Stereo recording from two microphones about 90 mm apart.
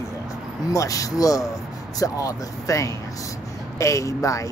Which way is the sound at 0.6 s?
40° left (ahead or behind).